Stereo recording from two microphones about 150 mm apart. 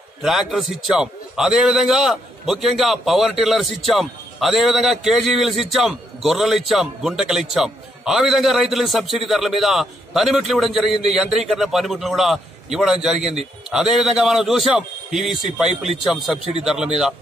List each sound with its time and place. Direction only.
0.2 s a man's voice: centre (ahead or behind)